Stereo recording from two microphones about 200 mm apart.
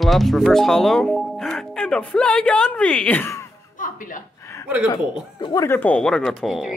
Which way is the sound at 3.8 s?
40° left (ahead or behind).